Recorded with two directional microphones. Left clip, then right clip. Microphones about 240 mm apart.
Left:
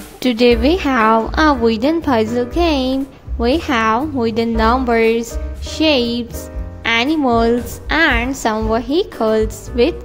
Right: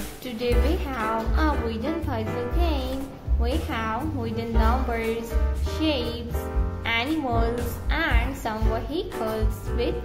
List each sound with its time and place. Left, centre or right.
0.2 s a woman's voice: left